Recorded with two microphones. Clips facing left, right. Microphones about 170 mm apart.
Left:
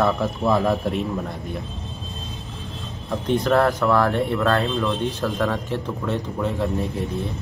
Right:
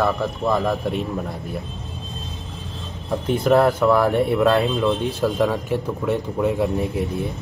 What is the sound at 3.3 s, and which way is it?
Speech, 10° right (ahead or behind).